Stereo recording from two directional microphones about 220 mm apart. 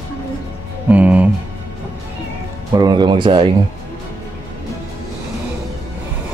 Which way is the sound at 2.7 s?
20° right (ahead or behind).